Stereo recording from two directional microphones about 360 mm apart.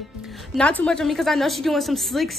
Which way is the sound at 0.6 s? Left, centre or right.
Centre.